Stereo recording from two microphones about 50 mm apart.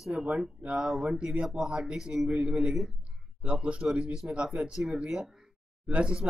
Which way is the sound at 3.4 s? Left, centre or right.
Right.